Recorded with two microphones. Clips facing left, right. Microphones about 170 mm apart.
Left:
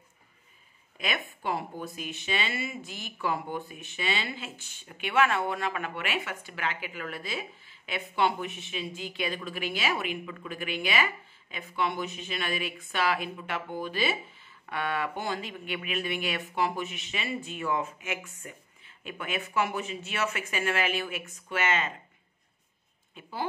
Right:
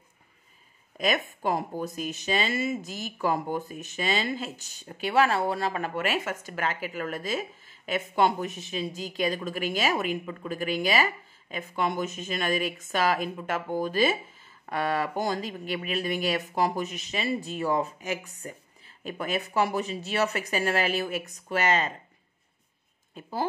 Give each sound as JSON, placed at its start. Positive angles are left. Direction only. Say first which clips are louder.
{"t": 0.9, "sound": "speech", "louder": "right 7 dB", "side_deg": -40}
{"t": 23.2, "sound": "speech", "louder": "right 5 dB", "side_deg": -40}